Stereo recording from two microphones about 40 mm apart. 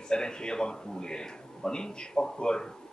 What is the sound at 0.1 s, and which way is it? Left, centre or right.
Speech, centre.